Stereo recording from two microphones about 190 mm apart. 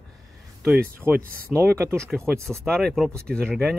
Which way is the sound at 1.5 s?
15° right (ahead or behind).